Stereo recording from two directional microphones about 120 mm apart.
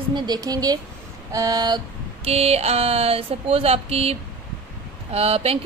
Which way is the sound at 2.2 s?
60° right (ahead or behind).